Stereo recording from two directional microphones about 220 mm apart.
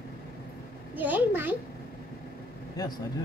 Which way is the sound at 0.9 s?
10° right (ahead or behind).